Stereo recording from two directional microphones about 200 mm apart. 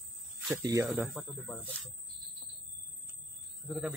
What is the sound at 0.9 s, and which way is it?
Speech, centre (ahead or behind).